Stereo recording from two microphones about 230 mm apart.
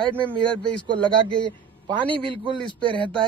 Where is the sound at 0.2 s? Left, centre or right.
Centre.